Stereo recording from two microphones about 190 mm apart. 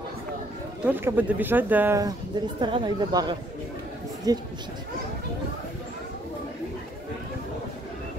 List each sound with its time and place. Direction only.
0.8 s speech: 10° right (ahead or behind)